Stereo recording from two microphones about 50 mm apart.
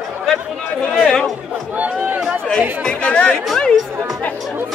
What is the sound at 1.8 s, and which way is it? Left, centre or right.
Speech, right.